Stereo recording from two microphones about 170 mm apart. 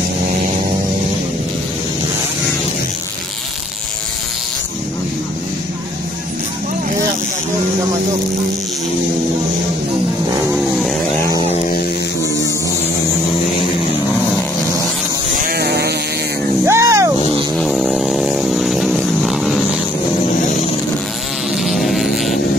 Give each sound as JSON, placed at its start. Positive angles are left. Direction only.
{"t": 10.5, "sound": "vehicle", "side_deg": 0}
{"t": 15.3, "sound": "a sound", "side_deg": -60}
{"t": 16.6, "sound": "music", "side_deg": -15}
{"t": 17.6, "sound": "chainsaw", "side_deg": 0}
{"t": 21.6, "sound": "buzz", "side_deg": 0}